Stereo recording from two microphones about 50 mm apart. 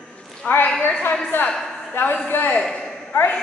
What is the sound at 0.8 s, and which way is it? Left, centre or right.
Speech, left.